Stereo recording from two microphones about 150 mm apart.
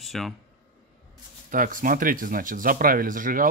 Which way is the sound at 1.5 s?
65° right (ahead or behind).